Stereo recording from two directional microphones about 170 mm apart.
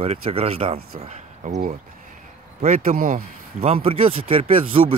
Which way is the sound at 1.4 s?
45° right (ahead or behind).